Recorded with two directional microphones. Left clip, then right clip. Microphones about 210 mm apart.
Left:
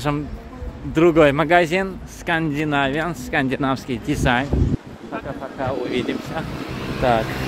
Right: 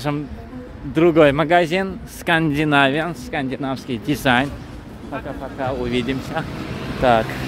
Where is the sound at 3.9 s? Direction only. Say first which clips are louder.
Right 6 dB; 10° right (ahead or behind).